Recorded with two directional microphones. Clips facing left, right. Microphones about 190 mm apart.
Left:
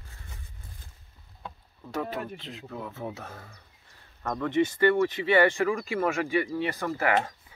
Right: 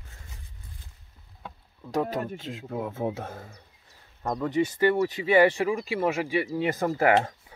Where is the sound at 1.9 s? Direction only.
45° right (ahead or behind).